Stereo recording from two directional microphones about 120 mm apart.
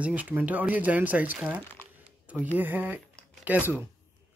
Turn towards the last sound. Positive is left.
turn(degrees=-15)  # may be behind; listen again after turning